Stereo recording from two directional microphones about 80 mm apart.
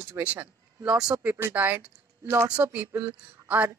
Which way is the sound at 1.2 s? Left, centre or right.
Right.